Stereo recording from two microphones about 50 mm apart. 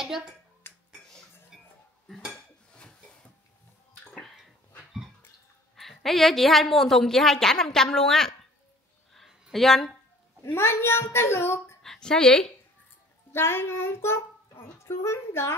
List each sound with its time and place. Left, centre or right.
0.0 s speech: centre
0.7 s finger snapping: left
1.5 s a sound: centre
2.7 s a sound: centre
5.8 s a woman's voice: centre
9.1 s a sound: centre
10.4 s a woman's voice: left
11.8 s a woman's voice: centre
13.3 s a child's voice: left